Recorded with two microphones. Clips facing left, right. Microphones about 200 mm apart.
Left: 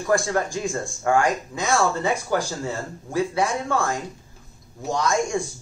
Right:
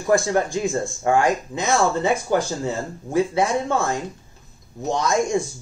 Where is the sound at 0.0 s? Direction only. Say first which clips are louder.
Right 3 dB; 20° right (ahead or behind).